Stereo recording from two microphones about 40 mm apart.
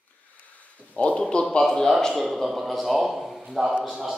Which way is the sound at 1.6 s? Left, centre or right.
Centre.